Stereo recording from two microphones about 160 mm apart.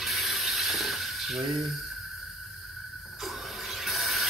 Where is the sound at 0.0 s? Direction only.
Centre (ahead or behind).